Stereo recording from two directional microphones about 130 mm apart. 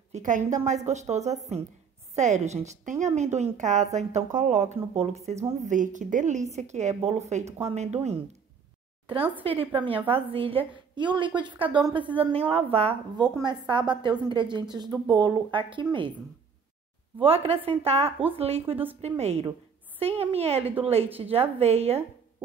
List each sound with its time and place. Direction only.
0.1 s a woman's voice: 75° right (ahead or behind)
0.5 s a woman's voice: 60° right (ahead or behind)
3.2 s a woman's voice: 60° right (ahead or behind)
5.6 s a woman's voice: 75° right (ahead or behind)
6.5 s a woman's voice: 60° right (ahead or behind)
9.4 s a woman's voice: 45° right (ahead or behind)
13.2 s a woman's voice: 35° right (ahead or behind)
17.2 s a woman's voice: 45° right (ahead or behind)